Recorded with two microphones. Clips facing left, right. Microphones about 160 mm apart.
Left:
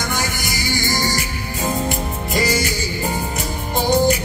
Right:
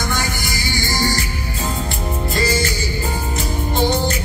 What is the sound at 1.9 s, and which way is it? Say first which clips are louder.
Music: even; 15° left (ahead or behind).